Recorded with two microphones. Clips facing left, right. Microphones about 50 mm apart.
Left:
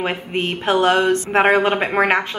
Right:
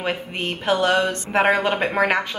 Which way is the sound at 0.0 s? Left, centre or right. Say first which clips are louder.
Left 3 dB; left.